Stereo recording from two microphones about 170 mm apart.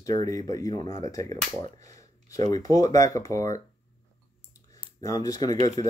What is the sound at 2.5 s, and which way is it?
Speech, 20° left (ahead or behind).